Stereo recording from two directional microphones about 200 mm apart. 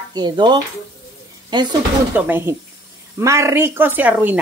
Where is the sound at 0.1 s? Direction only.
20° right (ahead or behind).